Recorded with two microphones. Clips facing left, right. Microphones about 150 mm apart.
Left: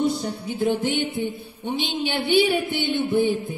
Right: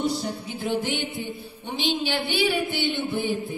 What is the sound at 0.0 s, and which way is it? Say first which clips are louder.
Music: left 3 dB; 55° left (ahead or behind).